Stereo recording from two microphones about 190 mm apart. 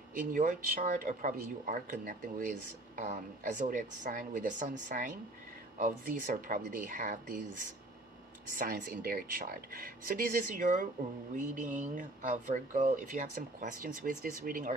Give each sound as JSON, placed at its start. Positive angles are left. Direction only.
{"t": 0.2, "sound": "speech", "side_deg": -45}
{"t": 8.5, "sound": "speech", "side_deg": -50}